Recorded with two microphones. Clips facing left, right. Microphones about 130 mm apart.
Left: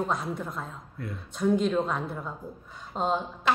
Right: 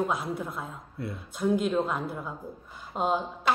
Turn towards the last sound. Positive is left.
turn(degrees=-10)  # may be behind; listen again after turning